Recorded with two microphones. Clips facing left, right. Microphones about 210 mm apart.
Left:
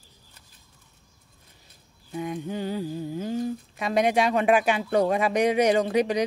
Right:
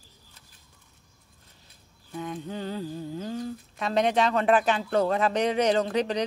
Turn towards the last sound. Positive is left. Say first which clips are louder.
# left 3 dB
turn(degrees=10)  # may be behind; listen again after turning